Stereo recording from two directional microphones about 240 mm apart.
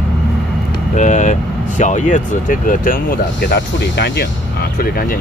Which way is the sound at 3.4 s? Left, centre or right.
Left.